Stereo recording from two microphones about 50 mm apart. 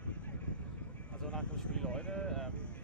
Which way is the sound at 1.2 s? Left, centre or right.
Centre.